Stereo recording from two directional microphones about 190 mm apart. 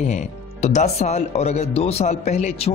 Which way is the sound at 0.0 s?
40° left (ahead or behind).